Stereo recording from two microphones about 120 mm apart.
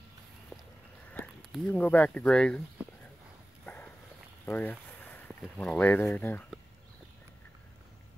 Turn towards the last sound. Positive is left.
turn(degrees=15)  # may be behind; listen again after turning